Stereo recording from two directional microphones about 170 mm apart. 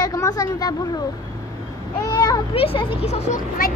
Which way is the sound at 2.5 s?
35° left (ahead or behind).